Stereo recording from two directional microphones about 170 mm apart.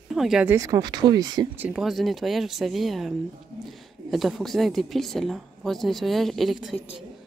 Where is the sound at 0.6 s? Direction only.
20° right (ahead or behind).